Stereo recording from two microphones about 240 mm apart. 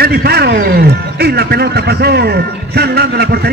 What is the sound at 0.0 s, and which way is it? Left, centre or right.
A man's voice, right.